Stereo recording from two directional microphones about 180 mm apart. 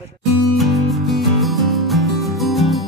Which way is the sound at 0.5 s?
Centre (ahead or behind).